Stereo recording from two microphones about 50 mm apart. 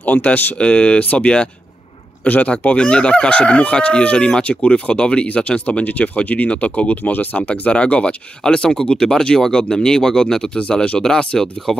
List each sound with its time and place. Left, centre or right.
0.0 s speech: left
2.2 s speech: left; by 10.6 s centre
10.6 s speech: left